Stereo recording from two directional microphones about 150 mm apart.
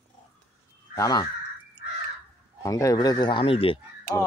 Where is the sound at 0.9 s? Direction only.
25° left (ahead or behind).